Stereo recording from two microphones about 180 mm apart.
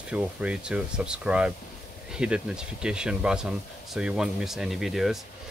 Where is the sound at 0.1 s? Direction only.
5° right (ahead or behind).